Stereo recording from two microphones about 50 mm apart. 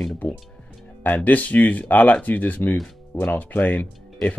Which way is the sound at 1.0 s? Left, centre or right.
Left.